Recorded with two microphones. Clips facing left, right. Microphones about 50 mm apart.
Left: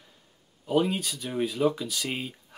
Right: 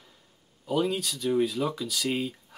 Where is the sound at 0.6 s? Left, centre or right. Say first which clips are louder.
Left 2 dB; centre.